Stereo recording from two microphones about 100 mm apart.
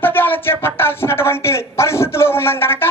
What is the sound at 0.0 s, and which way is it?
Speech, 20° left (ahead or behind).